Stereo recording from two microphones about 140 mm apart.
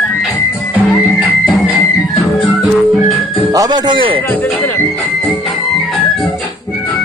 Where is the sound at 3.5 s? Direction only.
30° right (ahead or behind).